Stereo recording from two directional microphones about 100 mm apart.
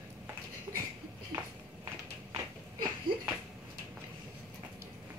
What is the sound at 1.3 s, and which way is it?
Walk, 50° right (ahead or behind).